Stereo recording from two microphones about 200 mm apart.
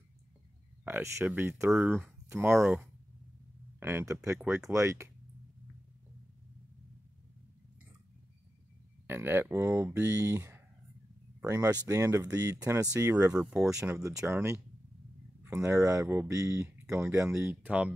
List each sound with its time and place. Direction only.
0.8 s speech: 10° right (ahead or behind)
9.0 s speech: 10° right (ahead or behind)